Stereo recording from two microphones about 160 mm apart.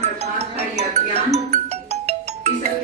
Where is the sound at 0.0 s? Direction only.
40° right (ahead or behind).